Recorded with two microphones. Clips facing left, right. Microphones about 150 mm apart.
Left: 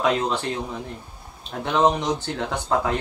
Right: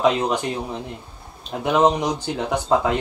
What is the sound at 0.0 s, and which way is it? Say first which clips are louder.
Speech: right 3 dB; 15° right (ahead or behind).